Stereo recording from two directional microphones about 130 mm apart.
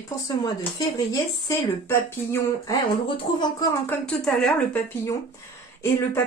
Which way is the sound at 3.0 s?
45° left (ahead or behind).